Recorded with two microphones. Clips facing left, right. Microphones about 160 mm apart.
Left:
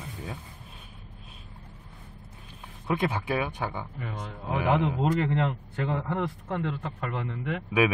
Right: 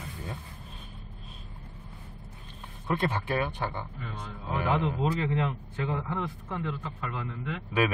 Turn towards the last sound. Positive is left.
turn(degrees=60)  # may be behind; listen again after turning